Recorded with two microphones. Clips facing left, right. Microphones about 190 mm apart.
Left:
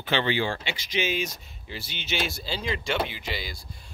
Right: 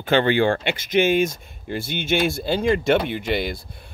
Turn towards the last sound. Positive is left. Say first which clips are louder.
# right 11 dB
turn(degrees=-55)  # may be behind; listen again after turning